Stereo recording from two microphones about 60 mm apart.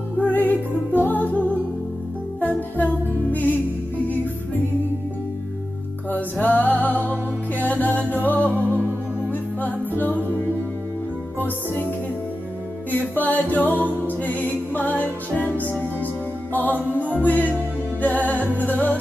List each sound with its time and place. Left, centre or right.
0.2 s music: left
2.4 s music: left
6.1 s music: left
8.6 s music: right
9.3 s music: left
12.9 s music: left
17.2 s music: left